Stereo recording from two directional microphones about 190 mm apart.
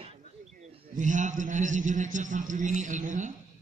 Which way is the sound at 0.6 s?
40° right (ahead or behind).